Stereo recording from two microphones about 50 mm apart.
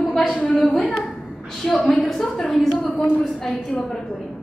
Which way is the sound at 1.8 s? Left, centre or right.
Left.